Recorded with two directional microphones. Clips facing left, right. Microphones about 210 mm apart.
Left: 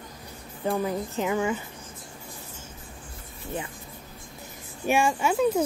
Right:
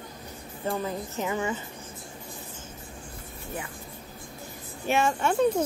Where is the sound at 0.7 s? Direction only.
15° left (ahead or behind).